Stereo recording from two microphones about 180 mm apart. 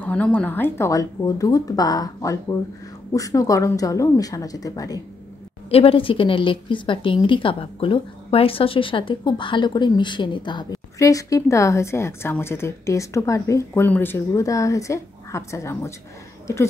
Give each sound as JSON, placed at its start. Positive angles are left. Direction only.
{"t": 0.0, "sound": "a woman's voice", "side_deg": 10}
{"t": 5.7, "sound": "a woman's voice", "side_deg": 30}